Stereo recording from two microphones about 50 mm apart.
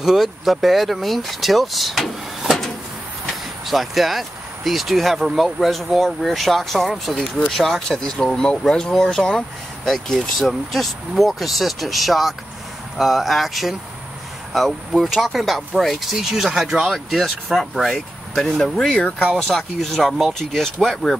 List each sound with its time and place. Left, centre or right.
0.0 s speech: centre
16.8 s speech: centre
19.0 s speech: left
19.3 s speech: centre